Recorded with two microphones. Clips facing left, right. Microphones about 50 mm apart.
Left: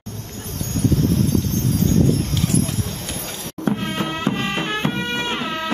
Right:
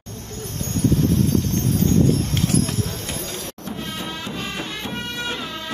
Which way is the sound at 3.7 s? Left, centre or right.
Left.